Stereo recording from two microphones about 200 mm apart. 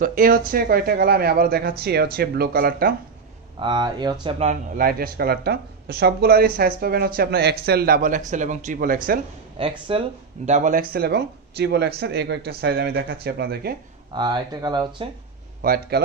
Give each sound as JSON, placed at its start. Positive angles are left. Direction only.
{"t": 0.0, "sound": "speech", "side_deg": -45}
{"t": 3.6, "sound": "speech", "side_deg": -20}
{"t": 4.7, "sound": "speech", "side_deg": -50}
{"t": 9.6, "sound": "speech", "side_deg": -25}
{"t": 14.1, "sound": "speech", "side_deg": -20}
{"t": 15.6, "sound": "speech", "side_deg": -50}